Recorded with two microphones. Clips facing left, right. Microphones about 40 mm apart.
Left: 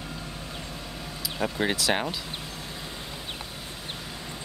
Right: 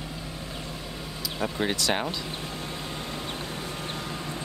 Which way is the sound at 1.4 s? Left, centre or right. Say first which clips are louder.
Left 1 dB; centre.